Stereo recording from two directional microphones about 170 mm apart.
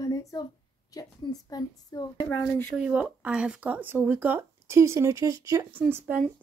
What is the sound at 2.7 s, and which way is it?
Speech, 5° right (ahead or behind).